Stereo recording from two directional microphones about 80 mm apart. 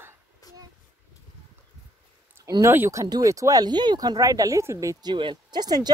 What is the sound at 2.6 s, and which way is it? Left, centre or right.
Speech, right.